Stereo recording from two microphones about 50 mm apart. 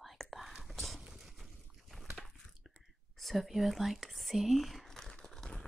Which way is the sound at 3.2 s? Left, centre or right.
Centre.